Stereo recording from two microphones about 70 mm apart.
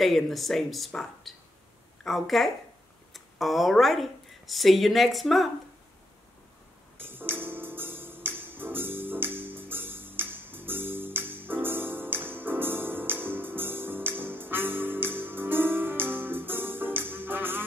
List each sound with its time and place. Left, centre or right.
0.0 s speech: centre
7.0 s music: right